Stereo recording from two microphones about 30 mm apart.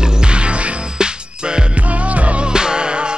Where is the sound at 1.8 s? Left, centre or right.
Right.